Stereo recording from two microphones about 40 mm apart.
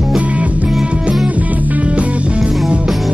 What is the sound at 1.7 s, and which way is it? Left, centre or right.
Music, right.